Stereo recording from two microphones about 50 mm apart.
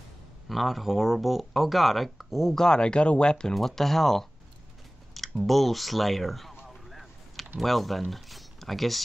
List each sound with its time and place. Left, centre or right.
0.5 s speech: centre
3.5 s speech: centre
5.4 s speech: centre
6.7 s vehicle: centre
7.6 s speech: centre